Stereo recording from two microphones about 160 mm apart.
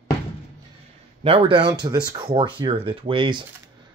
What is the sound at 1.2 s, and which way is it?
Speech, 35° right (ahead or behind).